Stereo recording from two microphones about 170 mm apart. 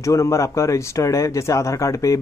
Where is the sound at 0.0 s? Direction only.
20° left (ahead or behind).